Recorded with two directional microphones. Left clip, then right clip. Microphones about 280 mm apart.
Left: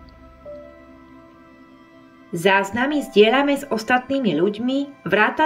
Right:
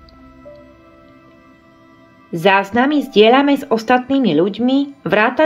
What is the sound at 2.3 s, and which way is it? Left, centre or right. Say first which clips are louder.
Speech: right 5 dB; centre.